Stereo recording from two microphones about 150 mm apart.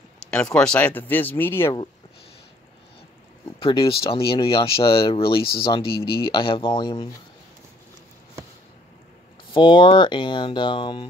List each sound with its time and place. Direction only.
0.3 s speech: 5° left (ahead or behind)
3.5 s speech: 35° left (ahead or behind)
9.5 s speech: 35° left (ahead or behind)